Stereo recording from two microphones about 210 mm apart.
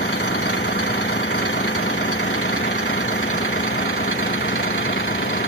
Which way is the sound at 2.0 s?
80° left.